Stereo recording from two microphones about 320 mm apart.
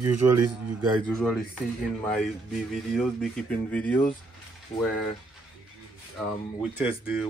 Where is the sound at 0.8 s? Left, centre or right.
Centre.